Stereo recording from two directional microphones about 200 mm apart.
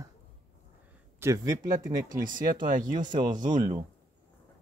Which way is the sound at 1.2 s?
15° right (ahead or behind).